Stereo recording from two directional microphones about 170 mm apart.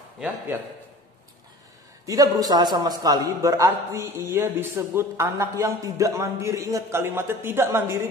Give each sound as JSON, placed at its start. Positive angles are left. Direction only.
{"t": 2.0, "sound": "a man's voice", "side_deg": -20}